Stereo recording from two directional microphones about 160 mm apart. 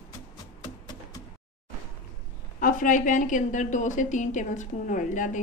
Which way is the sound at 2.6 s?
55° left (ahead or behind).